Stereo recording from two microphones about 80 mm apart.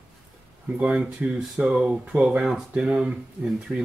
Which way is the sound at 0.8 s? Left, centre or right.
Centre.